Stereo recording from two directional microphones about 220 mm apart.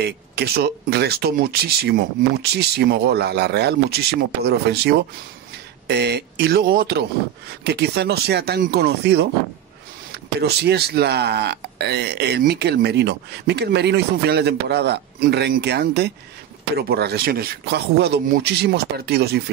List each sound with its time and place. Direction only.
0.0 s speech: 45° right (ahead or behind)